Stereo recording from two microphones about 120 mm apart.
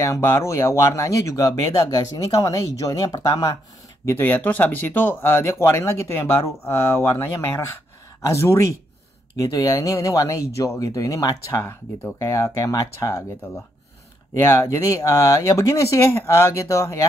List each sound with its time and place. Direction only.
0.0 s speech: 25° left (ahead or behind)
4.0 s speech: 20° left (ahead or behind)
14.3 s speech: 25° left (ahead or behind)